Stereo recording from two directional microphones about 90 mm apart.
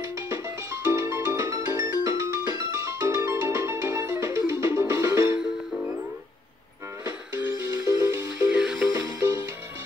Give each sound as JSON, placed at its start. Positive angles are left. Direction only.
{"t": 0.0, "sound": "music", "side_deg": -35}
{"t": 7.6, "sound": "music", "side_deg": -35}
{"t": 8.5, "sound": "music", "side_deg": -5}
{"t": 8.9, "sound": "music", "side_deg": -30}